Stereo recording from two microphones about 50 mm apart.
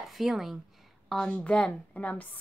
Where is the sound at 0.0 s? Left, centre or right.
Centre.